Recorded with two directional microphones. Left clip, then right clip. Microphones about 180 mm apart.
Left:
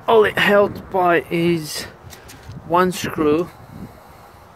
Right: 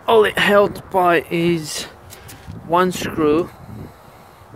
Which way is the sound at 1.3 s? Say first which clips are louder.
Even; 5° right (ahead or behind).